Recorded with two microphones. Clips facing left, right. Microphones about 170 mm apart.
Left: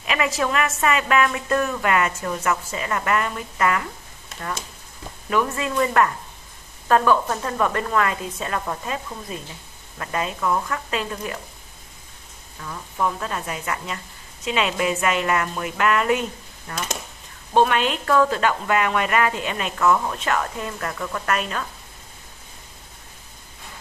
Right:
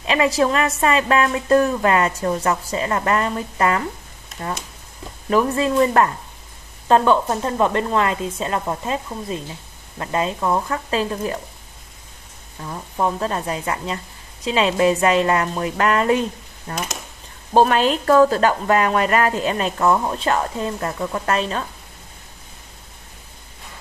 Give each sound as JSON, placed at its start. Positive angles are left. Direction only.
{"t": 0.0, "sound": "speech", "side_deg": -30}
{"t": 5.3, "sound": "speech", "side_deg": -35}
{"t": 12.6, "sound": "speech", "side_deg": -30}